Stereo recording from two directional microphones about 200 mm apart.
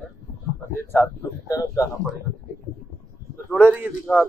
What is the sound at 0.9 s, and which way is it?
Speech, 15° left (ahead or behind).